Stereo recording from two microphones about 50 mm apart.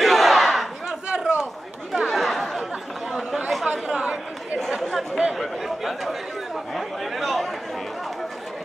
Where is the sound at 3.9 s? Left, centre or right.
Right.